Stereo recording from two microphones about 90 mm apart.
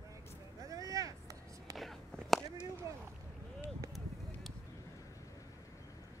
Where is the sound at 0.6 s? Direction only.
40° right (ahead or behind).